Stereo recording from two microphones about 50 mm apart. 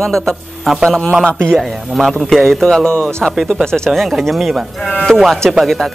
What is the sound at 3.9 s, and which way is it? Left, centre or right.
Speech, centre.